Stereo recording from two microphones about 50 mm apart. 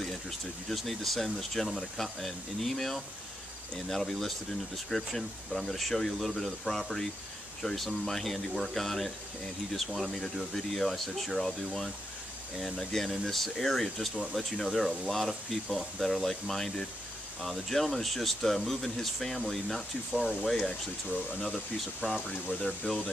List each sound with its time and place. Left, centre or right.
0.7 s speech: centre
12.9 s speech: centre
22.0 s speech: left
22.6 s speech: centre